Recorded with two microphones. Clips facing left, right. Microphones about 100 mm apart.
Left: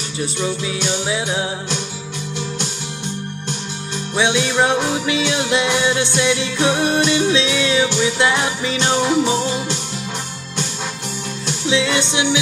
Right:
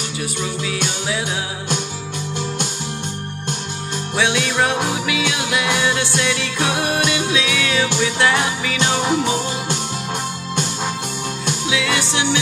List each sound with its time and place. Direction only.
0.7 s music: 20° left (ahead or behind)
4.2 s music: 20° left (ahead or behind)
11.7 s music: 20° left (ahead or behind)